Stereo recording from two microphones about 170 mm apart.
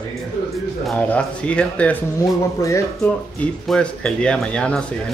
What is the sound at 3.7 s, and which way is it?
Speech, 5° left (ahead or behind).